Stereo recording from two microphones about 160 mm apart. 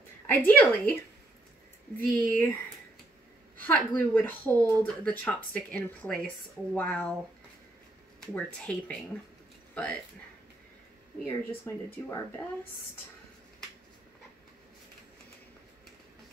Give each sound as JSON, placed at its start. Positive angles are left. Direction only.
{"t": 0.3, "sound": "speech", "side_deg": 10}
{"t": 2.0, "sound": "speech", "side_deg": 10}
{"t": 3.6, "sound": "speech", "side_deg": 10}
{"t": 8.2, "sound": "speech", "side_deg": 10}
{"t": 11.2, "sound": "speech", "side_deg": 15}